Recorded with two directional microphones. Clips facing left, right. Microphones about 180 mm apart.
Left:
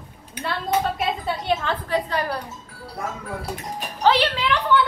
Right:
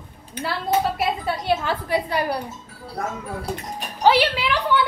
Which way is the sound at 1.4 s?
10° right (ahead or behind).